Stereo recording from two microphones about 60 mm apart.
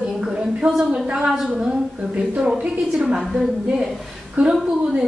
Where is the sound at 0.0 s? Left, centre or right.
Centre.